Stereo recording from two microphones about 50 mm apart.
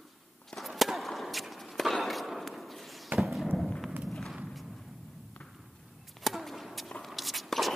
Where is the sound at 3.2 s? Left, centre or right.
Centre.